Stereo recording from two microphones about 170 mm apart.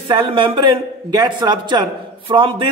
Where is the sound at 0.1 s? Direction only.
30° right (ahead or behind).